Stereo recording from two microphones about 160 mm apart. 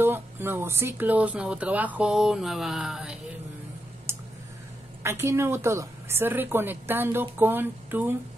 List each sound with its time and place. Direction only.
0.0 s speech: 15° right (ahead or behind)
4.1 s a sound: 15° right (ahead or behind)
5.0 s speech: 15° right (ahead or behind)